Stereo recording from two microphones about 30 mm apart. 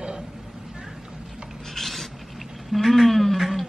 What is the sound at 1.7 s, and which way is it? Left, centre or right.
Filing, centre.